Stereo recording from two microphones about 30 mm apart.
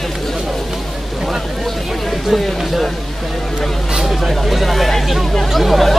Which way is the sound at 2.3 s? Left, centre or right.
Centre.